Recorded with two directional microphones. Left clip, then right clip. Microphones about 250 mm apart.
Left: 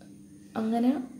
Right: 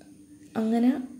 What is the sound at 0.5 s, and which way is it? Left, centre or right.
Speech, right.